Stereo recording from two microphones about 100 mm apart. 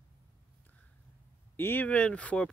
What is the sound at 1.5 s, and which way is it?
Speech, 20° left (ahead or behind).